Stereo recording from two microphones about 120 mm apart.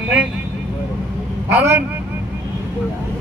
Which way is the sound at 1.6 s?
20° right (ahead or behind).